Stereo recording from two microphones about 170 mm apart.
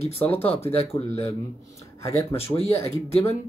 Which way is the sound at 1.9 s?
20° left (ahead or behind).